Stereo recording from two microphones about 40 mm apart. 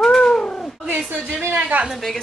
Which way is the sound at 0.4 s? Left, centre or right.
Left.